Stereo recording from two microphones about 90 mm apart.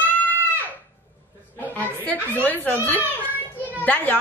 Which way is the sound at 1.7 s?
20° left (ahead or behind).